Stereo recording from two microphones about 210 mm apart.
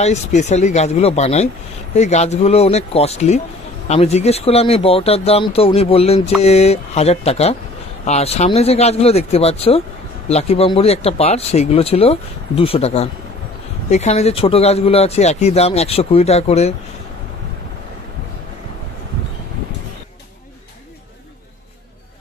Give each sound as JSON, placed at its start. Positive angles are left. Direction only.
{"t": 0.0, "sound": "speech", "side_deg": 35}